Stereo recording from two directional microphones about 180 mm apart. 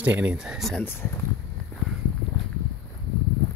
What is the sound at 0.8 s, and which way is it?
Speech, 15° left (ahead or behind).